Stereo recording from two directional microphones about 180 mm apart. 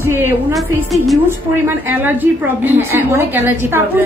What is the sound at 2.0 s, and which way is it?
A woman's voice, 10° right (ahead or behind).